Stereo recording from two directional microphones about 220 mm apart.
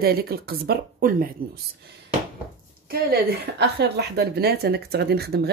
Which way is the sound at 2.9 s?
45° right (ahead or behind).